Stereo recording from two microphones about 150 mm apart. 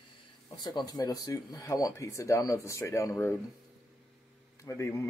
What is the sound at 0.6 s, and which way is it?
Speech, 25° left (ahead or behind).